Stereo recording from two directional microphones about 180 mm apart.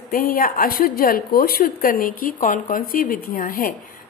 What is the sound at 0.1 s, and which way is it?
A woman's voice, 50° left (ahead or behind).